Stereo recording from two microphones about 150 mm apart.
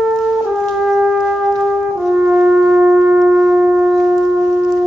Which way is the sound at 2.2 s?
5° right (ahead or behind).